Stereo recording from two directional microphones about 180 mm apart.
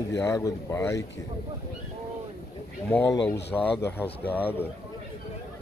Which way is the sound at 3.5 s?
5° left (ahead or behind).